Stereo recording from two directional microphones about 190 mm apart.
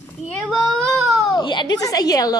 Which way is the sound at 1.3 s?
25° left (ahead or behind).